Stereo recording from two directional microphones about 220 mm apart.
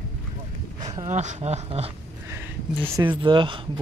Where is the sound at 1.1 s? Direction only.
30° right (ahead or behind).